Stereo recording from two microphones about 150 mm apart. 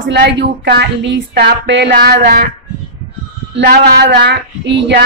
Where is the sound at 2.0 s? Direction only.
90° right.